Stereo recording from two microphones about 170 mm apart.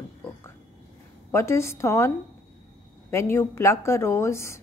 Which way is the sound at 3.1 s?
15° left (ahead or behind).